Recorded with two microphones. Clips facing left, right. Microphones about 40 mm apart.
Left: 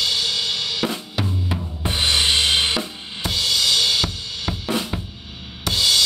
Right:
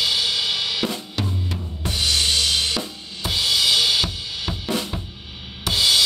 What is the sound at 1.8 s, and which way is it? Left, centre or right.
Drum kit, left.